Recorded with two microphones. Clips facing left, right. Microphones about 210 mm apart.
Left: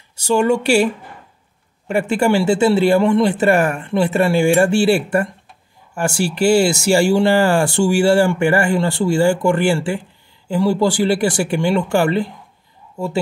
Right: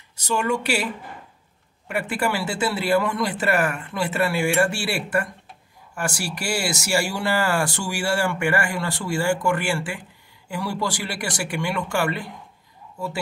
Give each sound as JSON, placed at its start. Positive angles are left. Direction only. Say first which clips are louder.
{"t": 0.1, "sound": "speech", "louder": "left 8 dB", "side_deg": 30}
{"t": 1.9, "sound": "speech", "louder": "left 9 dB", "side_deg": 30}